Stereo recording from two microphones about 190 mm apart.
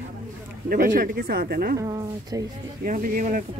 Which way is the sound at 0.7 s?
45° right (ahead or behind).